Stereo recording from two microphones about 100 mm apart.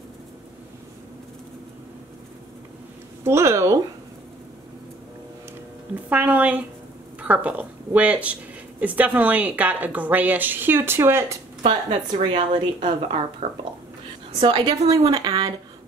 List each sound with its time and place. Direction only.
3.3 s speech: 25° right (ahead or behind)
5.9 s speech: 15° right (ahead or behind)
11.6 s a woman's voice: 65° right (ahead or behind)
13.4 s speech: 90° right
14.6 s speech: 35° right (ahead or behind)